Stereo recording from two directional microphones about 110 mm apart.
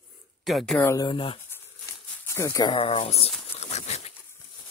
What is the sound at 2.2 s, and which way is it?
Speech, 25° left (ahead or behind).